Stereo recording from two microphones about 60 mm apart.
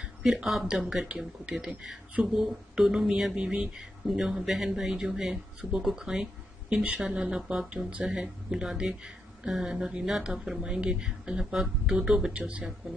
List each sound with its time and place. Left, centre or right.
0.2 s speech: centre